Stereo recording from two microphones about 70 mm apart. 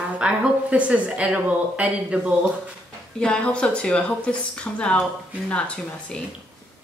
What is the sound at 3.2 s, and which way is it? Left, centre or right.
Speech, centre.